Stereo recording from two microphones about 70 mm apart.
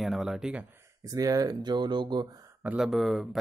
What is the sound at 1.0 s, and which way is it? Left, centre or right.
Speech, right.